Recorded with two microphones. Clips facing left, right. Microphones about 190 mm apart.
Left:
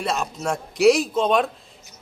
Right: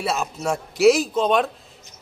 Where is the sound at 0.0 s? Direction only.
5° right (ahead or behind).